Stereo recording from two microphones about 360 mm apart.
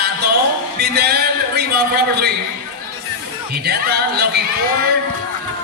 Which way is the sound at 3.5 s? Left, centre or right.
Right.